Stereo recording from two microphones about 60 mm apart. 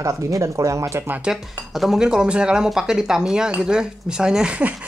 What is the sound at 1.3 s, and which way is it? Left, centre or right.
Speech, centre.